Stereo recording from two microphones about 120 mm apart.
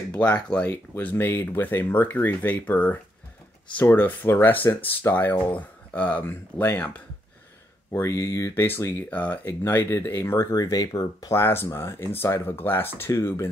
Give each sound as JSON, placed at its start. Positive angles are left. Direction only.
{"t": 0.1, "sound": "speech", "side_deg": 10}
{"t": 11.3, "sound": "speech", "side_deg": 20}